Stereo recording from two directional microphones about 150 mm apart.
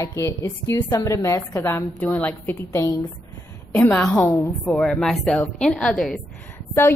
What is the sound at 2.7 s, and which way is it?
Speech, 25° left (ahead or behind).